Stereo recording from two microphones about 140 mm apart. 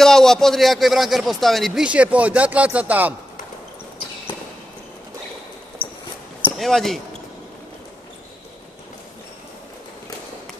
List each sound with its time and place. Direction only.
0.0 s a man's voice: 5° left (ahead or behind)
6.5 s speech: centre (ahead or behind)